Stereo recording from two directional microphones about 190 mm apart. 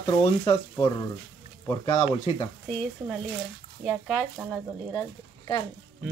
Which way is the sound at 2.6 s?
5° left (ahead or behind).